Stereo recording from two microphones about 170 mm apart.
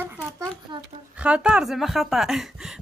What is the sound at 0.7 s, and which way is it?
Speech, 25° right (ahead or behind).